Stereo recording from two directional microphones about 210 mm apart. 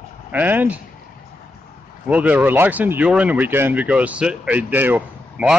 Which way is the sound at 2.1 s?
5° right (ahead or behind).